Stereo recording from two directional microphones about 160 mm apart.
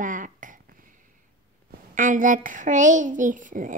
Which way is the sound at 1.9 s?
55° right (ahead or behind).